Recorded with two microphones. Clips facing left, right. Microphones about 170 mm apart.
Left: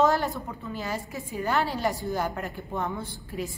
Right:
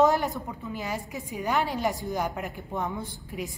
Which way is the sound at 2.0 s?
15° right (ahead or behind).